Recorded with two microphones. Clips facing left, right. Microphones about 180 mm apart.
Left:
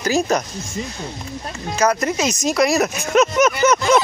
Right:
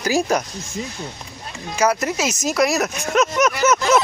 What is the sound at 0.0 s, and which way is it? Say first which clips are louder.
Speech: left 1 dB; 10° right (ahead or behind).